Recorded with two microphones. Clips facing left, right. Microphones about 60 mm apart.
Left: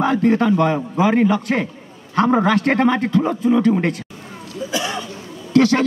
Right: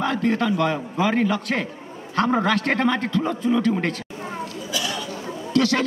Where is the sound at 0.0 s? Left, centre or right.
Left.